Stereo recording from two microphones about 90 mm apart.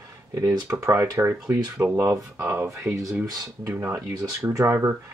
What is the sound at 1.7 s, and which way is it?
Speech, 20° right (ahead or behind).